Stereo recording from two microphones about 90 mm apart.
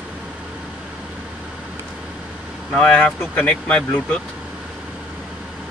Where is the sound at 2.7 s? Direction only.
10° left (ahead or behind).